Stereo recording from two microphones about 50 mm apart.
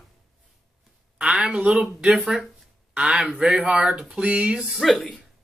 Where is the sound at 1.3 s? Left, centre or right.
Centre.